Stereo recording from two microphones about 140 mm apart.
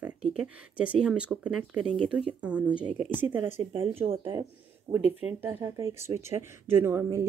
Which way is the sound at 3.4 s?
35° right (ahead or behind).